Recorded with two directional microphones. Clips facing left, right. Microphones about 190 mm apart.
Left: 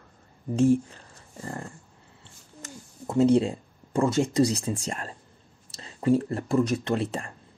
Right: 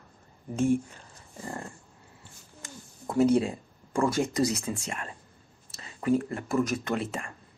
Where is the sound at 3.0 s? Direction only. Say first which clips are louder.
Left 2 dB; 25° left (ahead or behind).